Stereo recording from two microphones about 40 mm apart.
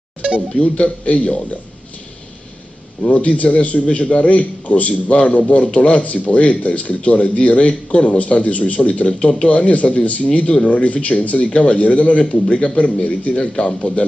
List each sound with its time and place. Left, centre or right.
0.6 s a man's voice: left
3.0 s a man's voice: left